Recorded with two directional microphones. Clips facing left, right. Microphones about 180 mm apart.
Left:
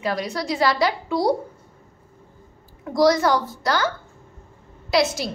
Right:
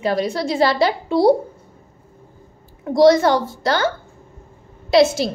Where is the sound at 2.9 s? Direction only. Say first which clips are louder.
Right 5 dB; 25° right (ahead or behind).